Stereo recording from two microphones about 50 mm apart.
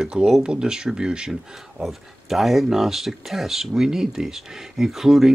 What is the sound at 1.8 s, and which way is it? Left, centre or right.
A man's voice, centre.